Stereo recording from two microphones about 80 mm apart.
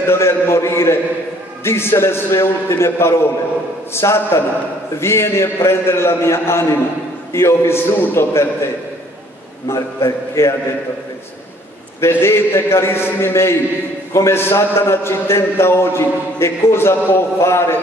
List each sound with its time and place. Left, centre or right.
0.0 s a man's voice: left
9.7 s a man's voice: left
12.0 s a man's voice: left